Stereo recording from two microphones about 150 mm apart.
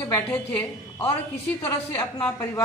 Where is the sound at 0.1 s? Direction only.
15° left (ahead or behind).